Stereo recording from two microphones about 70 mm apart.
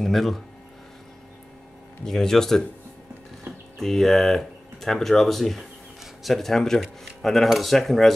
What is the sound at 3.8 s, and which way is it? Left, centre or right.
Speech, centre.